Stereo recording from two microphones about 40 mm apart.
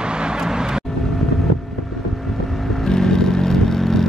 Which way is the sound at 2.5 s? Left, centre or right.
Centre.